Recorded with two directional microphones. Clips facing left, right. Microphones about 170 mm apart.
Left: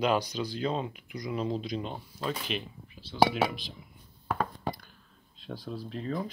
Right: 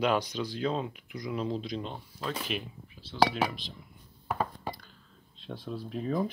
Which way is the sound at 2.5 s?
Centre (ahead or behind).